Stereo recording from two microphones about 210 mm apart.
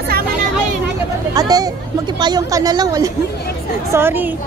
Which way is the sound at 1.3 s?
15° right (ahead or behind).